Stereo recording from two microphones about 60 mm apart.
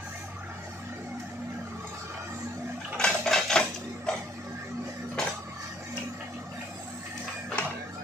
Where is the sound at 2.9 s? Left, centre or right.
Centre.